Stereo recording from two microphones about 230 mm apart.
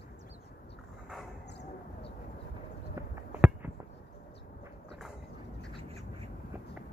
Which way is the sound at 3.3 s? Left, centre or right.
Centre.